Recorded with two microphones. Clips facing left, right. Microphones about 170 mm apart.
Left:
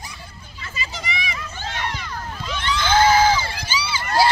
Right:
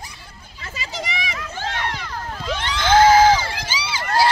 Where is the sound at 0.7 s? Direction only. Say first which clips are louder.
Right 2 dB; 90° right.